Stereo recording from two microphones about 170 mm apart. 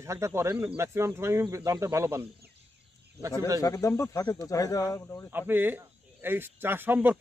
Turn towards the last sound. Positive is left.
turn(degrees=-10)  # may be behind; listen again after turning